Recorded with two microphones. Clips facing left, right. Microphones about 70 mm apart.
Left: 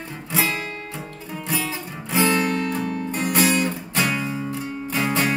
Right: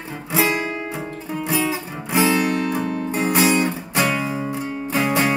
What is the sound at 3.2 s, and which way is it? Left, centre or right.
Music, centre.